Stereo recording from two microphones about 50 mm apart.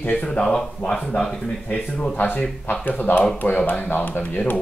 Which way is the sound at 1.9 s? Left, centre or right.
Left.